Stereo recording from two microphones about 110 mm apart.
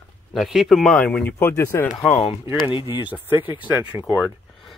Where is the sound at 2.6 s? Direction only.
50° left (ahead or behind).